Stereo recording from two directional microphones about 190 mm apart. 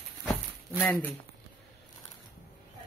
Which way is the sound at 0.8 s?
10° left (ahead or behind).